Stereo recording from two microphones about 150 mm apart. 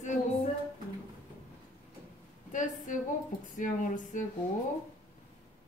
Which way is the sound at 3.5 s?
60° left (ahead or behind).